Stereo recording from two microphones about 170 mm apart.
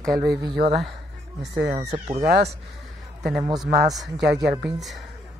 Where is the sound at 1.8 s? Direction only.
40° right (ahead or behind).